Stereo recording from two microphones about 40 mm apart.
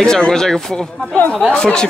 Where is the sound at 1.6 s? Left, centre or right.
Left.